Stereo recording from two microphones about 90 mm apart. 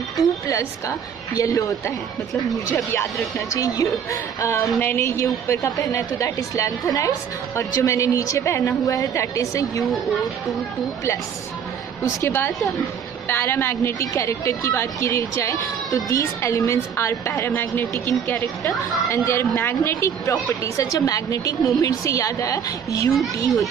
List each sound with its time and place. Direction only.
0.5 s speech: 35° left (ahead or behind)
3.4 s speech: 40° left (ahead or behind)
4.7 s speech: 25° left (ahead or behind)
12.0 s speech: 35° left (ahead or behind)